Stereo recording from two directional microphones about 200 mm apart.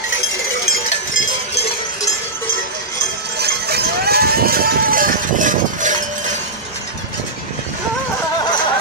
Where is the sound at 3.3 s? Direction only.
55° right (ahead or behind).